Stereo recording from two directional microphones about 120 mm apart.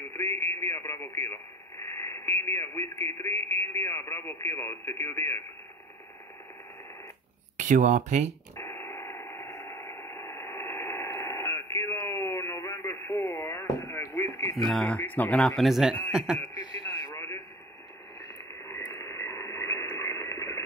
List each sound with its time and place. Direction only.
0.2 s radio: 20° left (ahead or behind)
3.6 s speech: 20° left (ahead or behind)
7.5 s speech: 90° right
8.5 s radio: 25° left (ahead or behind)
13.4 s speech: 25° left (ahead or behind)
14.7 s a man's voice: 10° left (ahead or behind)
17.0 s a sound: 25° left (ahead or behind)
19.0 s radio: 25° left (ahead or behind)